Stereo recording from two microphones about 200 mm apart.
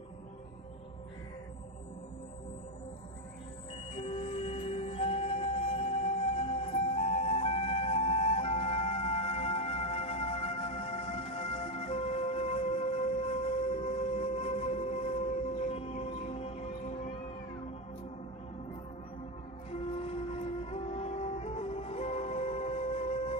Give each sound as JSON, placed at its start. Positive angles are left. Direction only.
{"t": 3.9, "sound": "music", "side_deg": 30}
{"t": 19.7, "sound": "music", "side_deg": 30}